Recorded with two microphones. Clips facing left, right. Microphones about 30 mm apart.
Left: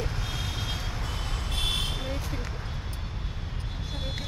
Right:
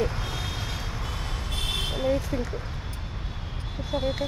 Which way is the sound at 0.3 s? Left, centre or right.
Centre.